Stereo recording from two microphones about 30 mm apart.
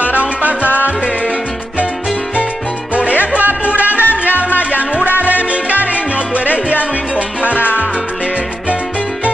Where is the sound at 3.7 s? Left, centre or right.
Right.